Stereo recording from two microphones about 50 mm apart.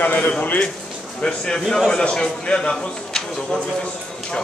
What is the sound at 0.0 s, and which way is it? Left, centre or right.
Speech, left.